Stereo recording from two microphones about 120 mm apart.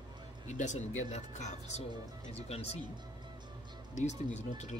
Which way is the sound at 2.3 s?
60° left (ahead or behind).